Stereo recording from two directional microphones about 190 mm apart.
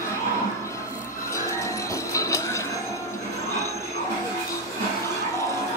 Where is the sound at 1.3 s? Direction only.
15° left (ahead or behind).